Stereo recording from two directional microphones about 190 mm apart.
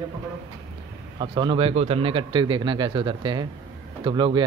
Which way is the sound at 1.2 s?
25° right (ahead or behind).